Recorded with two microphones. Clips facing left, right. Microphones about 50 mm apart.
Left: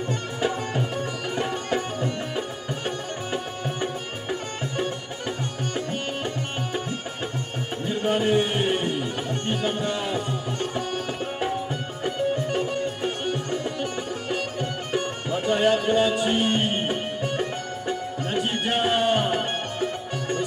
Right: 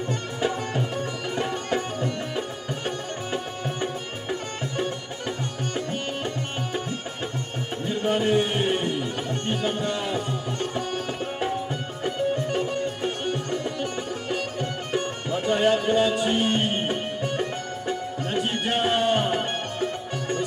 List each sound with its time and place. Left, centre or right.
0.4 s music: centre
8.0 s music: centre
12.0 s music: centre
14.9 s music: centre